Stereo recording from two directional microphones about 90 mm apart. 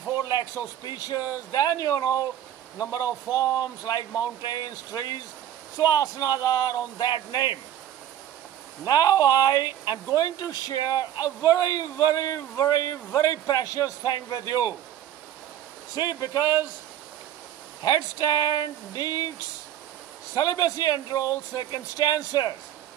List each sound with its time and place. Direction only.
0.2 s speech: 50° left (ahead or behind)
8.8 s speech: 45° left (ahead or behind)
15.9 s speech: 50° left (ahead or behind)
17.8 s speech: 45° left (ahead or behind)
20.3 s speech: 45° left (ahead or behind)